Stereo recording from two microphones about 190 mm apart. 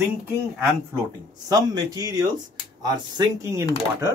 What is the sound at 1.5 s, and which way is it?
Speech, 20° right (ahead or behind).